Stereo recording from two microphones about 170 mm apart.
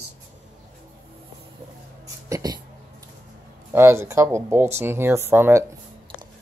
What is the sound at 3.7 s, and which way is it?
Speech, 15° right (ahead or behind).